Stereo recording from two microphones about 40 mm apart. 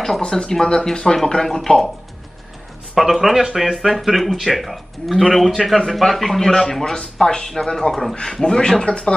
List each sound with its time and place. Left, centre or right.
0.2 s speech: left
3.0 s speech: centre
7.9 s speech: centre